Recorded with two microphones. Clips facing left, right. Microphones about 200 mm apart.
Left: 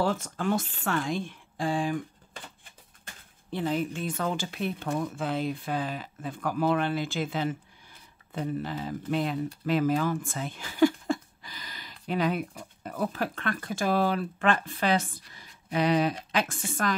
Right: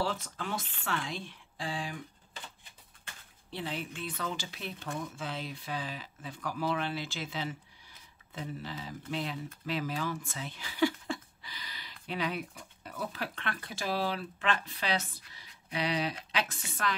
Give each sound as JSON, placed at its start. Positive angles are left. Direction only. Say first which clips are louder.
{"t": 0.0, "sound": "speech", "louder": "left 7 dB", "side_deg": 50}
{"t": 3.4, "sound": "speech", "louder": "left 9 dB", "side_deg": 45}